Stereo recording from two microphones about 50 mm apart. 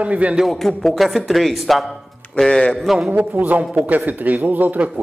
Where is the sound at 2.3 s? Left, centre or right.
Centre.